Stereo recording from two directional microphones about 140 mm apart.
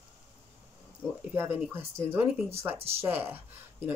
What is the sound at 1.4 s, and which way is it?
Speech, 15° right (ahead or behind).